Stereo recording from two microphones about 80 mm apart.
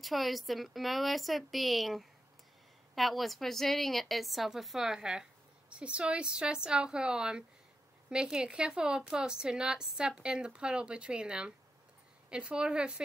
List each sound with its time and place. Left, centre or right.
0.0 s a woman's voice: centre